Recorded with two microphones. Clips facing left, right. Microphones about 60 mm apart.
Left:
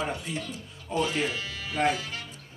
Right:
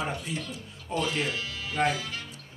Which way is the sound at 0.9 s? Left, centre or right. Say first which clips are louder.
Left 2 dB; left.